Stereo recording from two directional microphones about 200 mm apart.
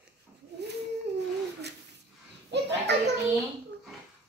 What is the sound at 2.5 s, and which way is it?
Children playing, 60° right (ahead or behind).